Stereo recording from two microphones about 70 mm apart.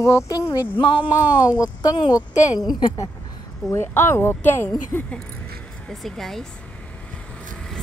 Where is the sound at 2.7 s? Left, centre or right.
Left.